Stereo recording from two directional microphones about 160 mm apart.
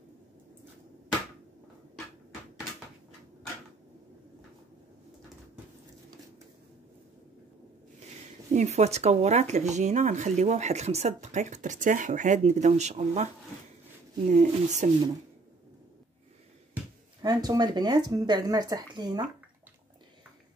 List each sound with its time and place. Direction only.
8.5 s speech: 45° right (ahead or behind)
17.2 s speech: 25° right (ahead or behind)